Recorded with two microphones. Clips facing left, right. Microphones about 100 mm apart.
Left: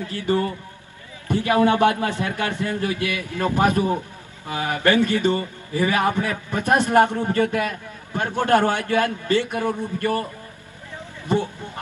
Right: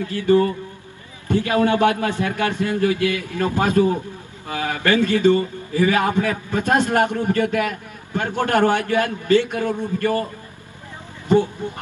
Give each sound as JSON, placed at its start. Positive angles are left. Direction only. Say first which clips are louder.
{"t": 0.0, "sound": "a man's voice", "louder": "right 6 dB", "side_deg": 20}
{"t": 2.5, "sound": "speech", "louder": "right 3 dB", "side_deg": -20}
{"t": 2.8, "sound": "a man's voice", "louder": "right 5 dB", "side_deg": 20}